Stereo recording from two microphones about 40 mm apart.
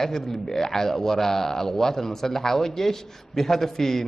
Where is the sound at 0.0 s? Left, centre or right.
Centre.